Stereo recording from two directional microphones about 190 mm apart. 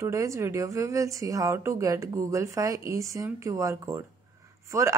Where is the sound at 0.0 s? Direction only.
15° right (ahead or behind).